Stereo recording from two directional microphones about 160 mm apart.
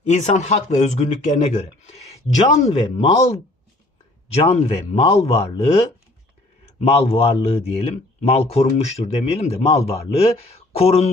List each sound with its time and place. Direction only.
0.1 s speech: 45° left (ahead or behind)
4.4 s a man's voice: 40° left (ahead or behind)